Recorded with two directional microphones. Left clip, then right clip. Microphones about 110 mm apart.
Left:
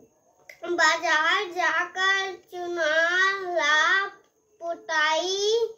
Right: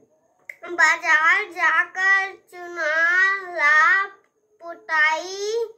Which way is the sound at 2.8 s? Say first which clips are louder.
Right 4 dB; 20° left (ahead or behind).